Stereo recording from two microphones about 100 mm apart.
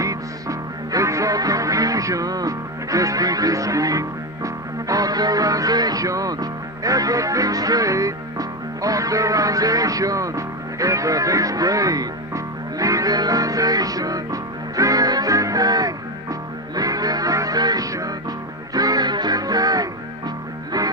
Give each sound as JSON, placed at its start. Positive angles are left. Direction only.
{"t": 0.0, "sound": "music", "side_deg": -35}